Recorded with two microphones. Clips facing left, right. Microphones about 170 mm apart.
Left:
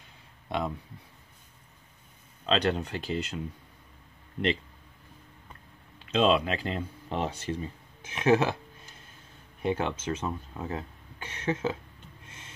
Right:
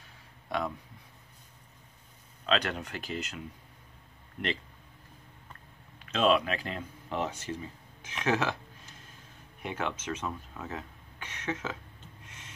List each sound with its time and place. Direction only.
0.5 s speech: 25° left (ahead or behind)
2.4 s speech: 30° left (ahead or behind)
6.0 s speech: 25° left (ahead or behind)
9.6 s speech: 30° left (ahead or behind)
12.3 s a sound: 30° left (ahead or behind)